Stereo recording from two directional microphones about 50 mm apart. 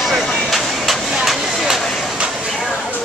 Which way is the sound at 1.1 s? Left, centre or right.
Centre.